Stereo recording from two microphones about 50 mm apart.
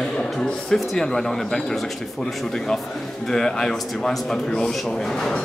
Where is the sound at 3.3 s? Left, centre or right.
Centre.